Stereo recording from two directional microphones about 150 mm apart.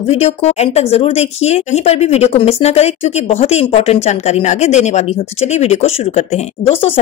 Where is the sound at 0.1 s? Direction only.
45° left (ahead or behind).